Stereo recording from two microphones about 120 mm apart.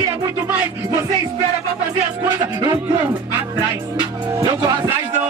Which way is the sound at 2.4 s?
35° right (ahead or behind).